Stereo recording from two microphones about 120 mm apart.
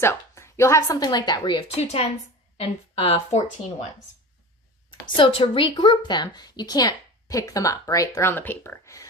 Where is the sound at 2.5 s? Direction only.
50° left (ahead or behind).